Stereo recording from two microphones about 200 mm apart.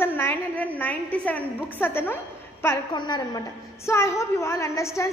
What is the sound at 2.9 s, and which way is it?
A woman's voice, 20° left (ahead or behind).